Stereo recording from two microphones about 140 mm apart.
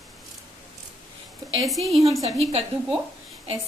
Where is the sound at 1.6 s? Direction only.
Centre (ahead or behind).